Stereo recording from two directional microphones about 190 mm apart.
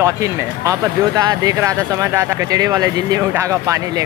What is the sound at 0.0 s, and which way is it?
Speech, 15° right (ahead or behind).